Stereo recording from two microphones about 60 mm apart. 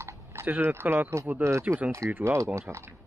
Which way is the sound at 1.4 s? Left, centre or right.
Right.